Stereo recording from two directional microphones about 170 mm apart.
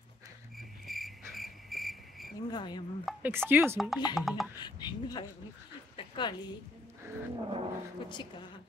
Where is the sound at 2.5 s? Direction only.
25° left (ahead or behind).